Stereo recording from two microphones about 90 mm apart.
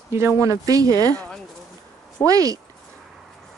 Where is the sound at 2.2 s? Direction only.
40° right (ahead or behind).